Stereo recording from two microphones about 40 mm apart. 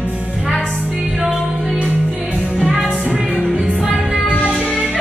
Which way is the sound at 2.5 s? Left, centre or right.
Centre.